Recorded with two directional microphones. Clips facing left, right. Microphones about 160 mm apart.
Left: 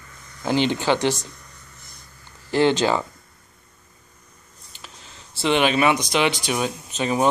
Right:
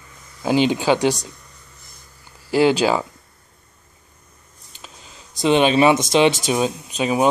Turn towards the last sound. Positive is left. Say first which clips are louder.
# right 3 dB
turn(degrees=-15)  # may be behind; listen again after turning